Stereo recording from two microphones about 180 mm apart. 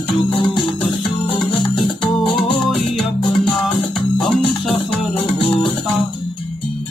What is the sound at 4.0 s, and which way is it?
Music, centre (ahead or behind).